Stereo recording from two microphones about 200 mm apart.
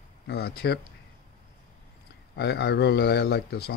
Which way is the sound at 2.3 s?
55° left (ahead or behind).